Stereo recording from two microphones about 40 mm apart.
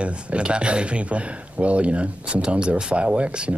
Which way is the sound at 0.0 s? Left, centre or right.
Right.